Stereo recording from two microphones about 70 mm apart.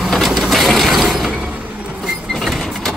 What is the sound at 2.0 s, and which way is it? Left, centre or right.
Printer, centre.